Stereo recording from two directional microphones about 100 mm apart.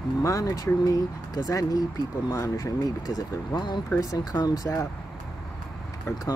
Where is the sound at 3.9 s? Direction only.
35° left (ahead or behind).